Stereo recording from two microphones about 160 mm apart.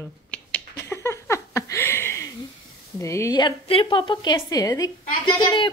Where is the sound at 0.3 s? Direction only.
10° left (ahead or behind).